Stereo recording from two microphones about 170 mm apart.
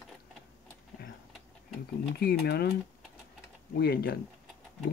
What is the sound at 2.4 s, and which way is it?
Speech, 70° left (ahead or behind).